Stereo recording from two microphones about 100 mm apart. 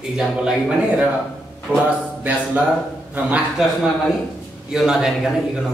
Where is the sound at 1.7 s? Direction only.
15° right (ahead or behind).